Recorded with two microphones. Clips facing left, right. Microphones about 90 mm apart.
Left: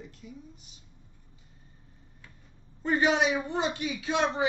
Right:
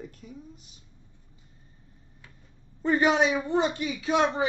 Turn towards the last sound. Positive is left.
turn(degrees=-35)  # may be behind; listen again after turning